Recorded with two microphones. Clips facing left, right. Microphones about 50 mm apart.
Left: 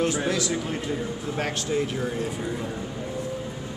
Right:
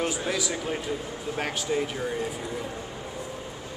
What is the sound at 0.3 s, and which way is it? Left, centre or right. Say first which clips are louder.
Speech: left 2 dB; centre.